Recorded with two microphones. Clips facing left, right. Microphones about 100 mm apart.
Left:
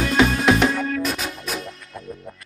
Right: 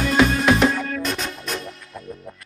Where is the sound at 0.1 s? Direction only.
Centre (ahead or behind).